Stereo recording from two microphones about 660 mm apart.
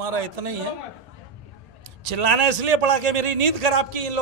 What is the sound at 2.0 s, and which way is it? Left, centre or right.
A man's voice, right.